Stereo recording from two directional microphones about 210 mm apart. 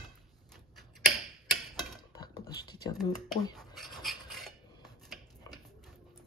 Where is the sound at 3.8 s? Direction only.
Centre (ahead or behind).